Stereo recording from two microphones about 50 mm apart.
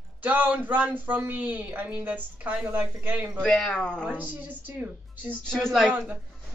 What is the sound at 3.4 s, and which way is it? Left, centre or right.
Speech, centre.